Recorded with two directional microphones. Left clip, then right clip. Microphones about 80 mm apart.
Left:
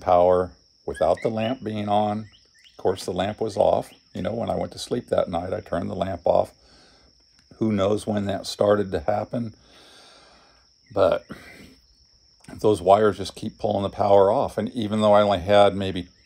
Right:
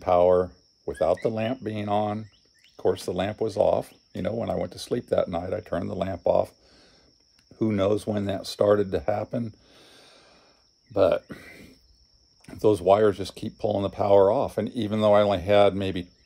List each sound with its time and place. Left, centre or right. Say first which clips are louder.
0.0 s speech: left 2 dB; right
7.5 s speech: left 1 dB; right